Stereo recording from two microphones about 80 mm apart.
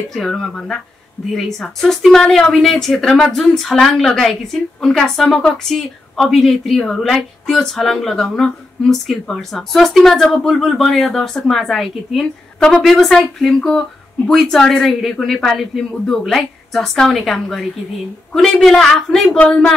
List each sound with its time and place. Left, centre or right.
0.1 s a woman's voice: centre
19.3 s a man's voice: centre